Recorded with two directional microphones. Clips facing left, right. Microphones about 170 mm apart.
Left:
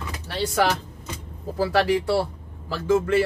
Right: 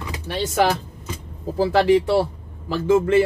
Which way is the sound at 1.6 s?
20° right (ahead or behind).